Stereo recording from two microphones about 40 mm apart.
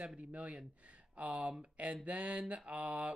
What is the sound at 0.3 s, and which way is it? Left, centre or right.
Speech, right.